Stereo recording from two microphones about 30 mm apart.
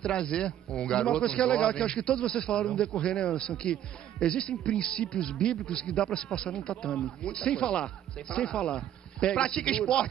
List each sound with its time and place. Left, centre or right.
0.0 s a man's voice: left